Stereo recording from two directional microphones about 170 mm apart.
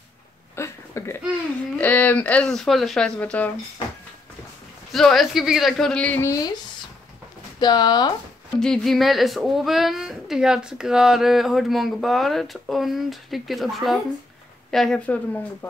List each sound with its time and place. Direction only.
0.6 s a sound: 15° left (ahead or behind)
1.8 s speech: 10° left (ahead or behind)
4.9 s speech: centre (ahead or behind); by 6.5 s 20° left (ahead or behind)
7.6 s speech: 25° left (ahead or behind)
8.5 s speech: 5° left (ahead or behind)